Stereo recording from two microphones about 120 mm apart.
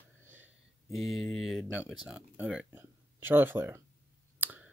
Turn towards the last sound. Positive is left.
turn(degrees=-15)  # may be behind; listen again after turning